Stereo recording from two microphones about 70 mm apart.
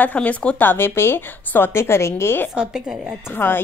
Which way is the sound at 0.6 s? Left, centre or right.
Left.